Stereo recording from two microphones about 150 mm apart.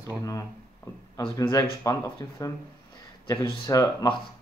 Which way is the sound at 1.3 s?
20° left (ahead or behind).